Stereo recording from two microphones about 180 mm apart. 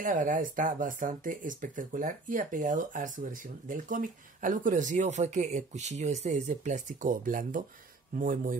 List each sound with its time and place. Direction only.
0.0 s speech: 45° right (ahead or behind)